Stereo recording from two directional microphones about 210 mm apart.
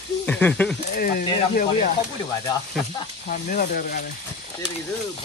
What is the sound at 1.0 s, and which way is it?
Speech, 40° left (ahead or behind).